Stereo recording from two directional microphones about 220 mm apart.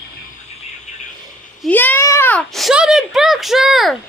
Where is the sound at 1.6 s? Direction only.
5° left (ahead or behind).